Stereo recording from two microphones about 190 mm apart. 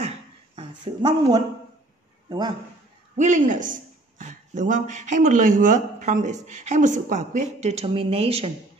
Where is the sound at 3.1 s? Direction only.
40° right (ahead or behind).